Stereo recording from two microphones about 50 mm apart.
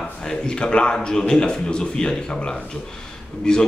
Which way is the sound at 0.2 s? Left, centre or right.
Centre.